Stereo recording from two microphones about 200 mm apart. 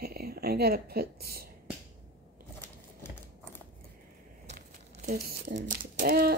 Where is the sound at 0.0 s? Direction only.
50° right (ahead or behind).